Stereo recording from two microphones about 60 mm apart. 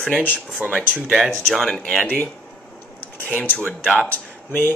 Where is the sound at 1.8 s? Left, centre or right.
Left.